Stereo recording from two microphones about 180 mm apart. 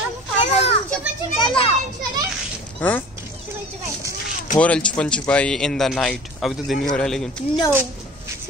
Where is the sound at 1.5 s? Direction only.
30° left (ahead or behind).